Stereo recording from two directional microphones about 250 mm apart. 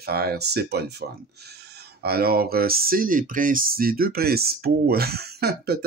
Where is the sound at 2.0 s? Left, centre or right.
Right.